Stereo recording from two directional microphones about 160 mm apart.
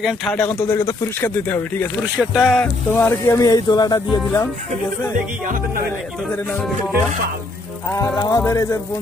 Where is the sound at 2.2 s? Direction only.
Centre (ahead or behind).